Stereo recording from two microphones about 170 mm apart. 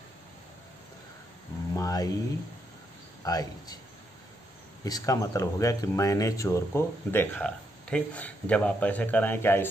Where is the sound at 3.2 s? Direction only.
20° left (ahead or behind).